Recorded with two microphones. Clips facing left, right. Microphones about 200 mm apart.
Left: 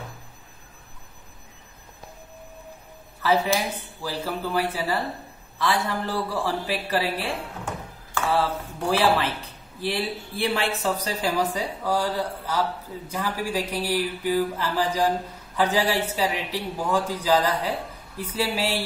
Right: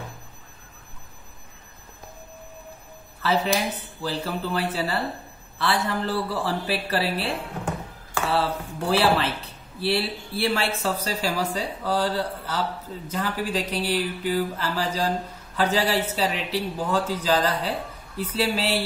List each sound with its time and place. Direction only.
4.0 s speech: 10° left (ahead or behind)